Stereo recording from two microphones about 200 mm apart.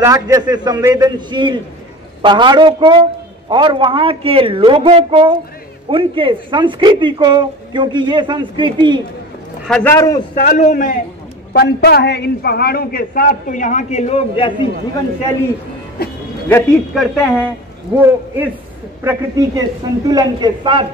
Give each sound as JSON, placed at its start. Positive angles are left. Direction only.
{"t": 0.0, "sound": "speech", "side_deg": -15}
{"t": 9.7, "sound": "a man's voice", "side_deg": 5}
{"t": 9.9, "sound": "a man's voice", "side_deg": 20}
{"t": 10.3, "sound": "a man's voice", "side_deg": 45}
{"t": 11.5, "sound": "a man's voice", "side_deg": 55}
{"t": 16.0, "sound": "a man's voice", "side_deg": 50}
{"t": 16.4, "sound": "a man's voice", "side_deg": 10}
{"t": 16.9, "sound": "speech", "side_deg": 0}